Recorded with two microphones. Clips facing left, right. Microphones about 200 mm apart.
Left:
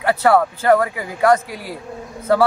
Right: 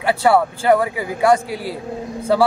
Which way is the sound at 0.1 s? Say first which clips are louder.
Even; 10° right (ahead or behind).